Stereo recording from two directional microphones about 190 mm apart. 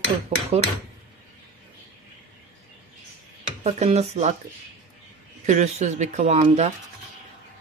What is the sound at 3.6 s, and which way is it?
Speech, 35° right (ahead or behind).